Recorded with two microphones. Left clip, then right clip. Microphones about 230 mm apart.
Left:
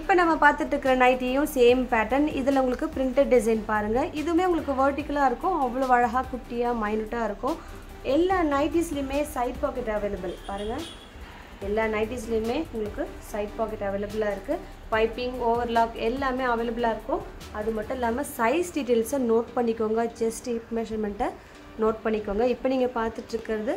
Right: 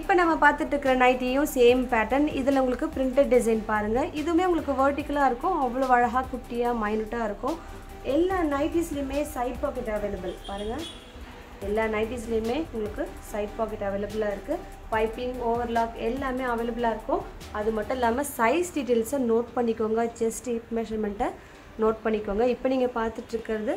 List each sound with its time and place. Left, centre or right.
0.0 s a woman's voice: centre
11.7 s a woman's voice: centre
14.9 s a woman's voice: centre
17.7 s a woman's voice: centre
18.8 s a woman's voice: centre